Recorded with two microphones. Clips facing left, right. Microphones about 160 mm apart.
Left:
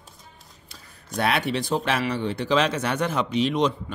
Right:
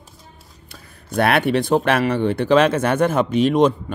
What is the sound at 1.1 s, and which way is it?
Speech, 60° right (ahead or behind).